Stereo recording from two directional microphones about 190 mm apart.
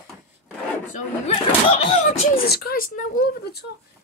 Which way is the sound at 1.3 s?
30° left (ahead or behind).